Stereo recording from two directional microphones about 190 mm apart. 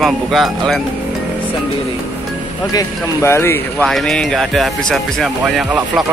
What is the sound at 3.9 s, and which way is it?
Speech, centre (ahead or behind).